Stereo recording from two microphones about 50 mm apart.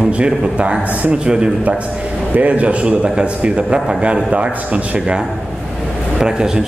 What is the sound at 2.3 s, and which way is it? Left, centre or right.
A man's voice, right.